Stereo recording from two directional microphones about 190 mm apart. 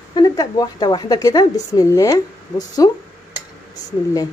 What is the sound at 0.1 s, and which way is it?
A woman's voice, 20° left (ahead or behind).